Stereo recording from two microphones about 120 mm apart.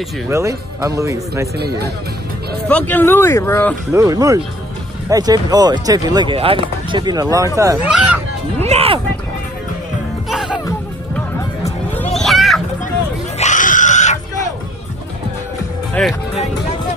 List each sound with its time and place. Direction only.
0.3 s speech: 25° right (ahead or behind)
2.7 s speech: 15° left (ahead or behind)
3.9 s speech: 30° right (ahead or behind)
6.3 s speech: 50° right (ahead or behind); by 7.8 s 25° right (ahead or behind)
7.8 s speech: 10° right (ahead or behind)
8.5 s a sound: 60° right (ahead or behind)
10.3 s music: 5° right (ahead or behind)
12.1 s a sound: centre (ahead or behind)
13.4 s pig: 90° left
16.0 s speech: 10° left (ahead or behind)